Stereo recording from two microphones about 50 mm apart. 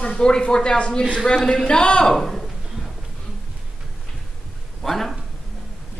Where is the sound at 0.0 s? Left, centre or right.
Centre.